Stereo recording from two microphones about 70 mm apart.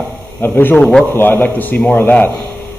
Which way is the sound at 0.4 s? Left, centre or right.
Left.